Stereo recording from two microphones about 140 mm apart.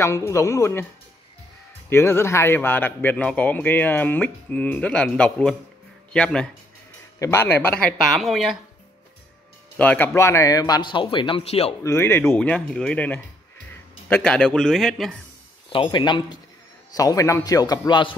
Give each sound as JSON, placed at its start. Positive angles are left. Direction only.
{"t": 0.0, "sound": "a man's voice", "side_deg": 20}
{"t": 1.9, "sound": "speech", "side_deg": 15}
{"t": 7.2, "sound": "speech", "side_deg": 20}
{"t": 9.8, "sound": "a man's voice", "side_deg": 15}
{"t": 11.8, "sound": "a man's voice", "side_deg": 20}
{"t": 15.7, "sound": "a man's voice", "side_deg": 35}